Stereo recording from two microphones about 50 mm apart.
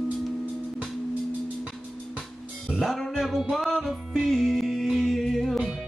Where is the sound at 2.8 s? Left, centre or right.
Centre.